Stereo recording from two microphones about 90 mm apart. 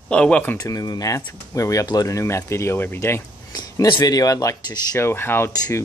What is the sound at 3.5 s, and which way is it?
Speech, 50° left (ahead or behind).